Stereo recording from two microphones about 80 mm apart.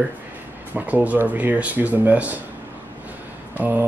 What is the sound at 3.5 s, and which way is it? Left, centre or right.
Speech, right.